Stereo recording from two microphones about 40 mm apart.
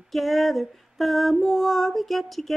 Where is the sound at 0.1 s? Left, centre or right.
Centre.